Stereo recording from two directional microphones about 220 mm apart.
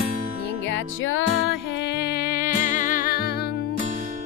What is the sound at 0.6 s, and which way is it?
Music, 60° left (ahead or behind).